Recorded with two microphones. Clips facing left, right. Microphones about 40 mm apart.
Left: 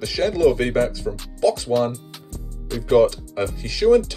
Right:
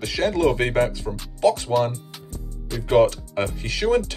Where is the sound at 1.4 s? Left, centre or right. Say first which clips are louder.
Even; right.